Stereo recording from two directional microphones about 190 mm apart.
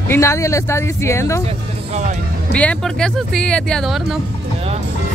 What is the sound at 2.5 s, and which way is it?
Speech, 5° left (ahead or behind).